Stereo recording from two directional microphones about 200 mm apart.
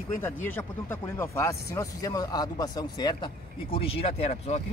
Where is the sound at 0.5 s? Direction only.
10° left (ahead or behind).